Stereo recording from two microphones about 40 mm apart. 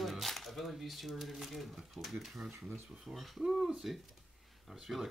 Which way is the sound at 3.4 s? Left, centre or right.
Centre.